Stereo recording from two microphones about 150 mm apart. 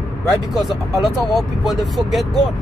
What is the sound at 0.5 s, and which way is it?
Speech, centre (ahead or behind).